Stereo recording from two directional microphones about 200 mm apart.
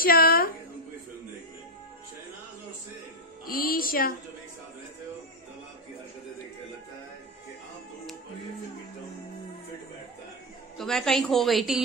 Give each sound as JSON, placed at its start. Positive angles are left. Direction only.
{"t": 0.0, "sound": "a sound", "side_deg": 50}
{"t": 3.4, "sound": "speech", "side_deg": 45}
{"t": 10.8, "sound": "a woman's voice", "side_deg": 0}